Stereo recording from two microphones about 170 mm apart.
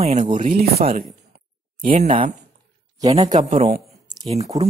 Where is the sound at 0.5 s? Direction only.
60° right (ahead or behind).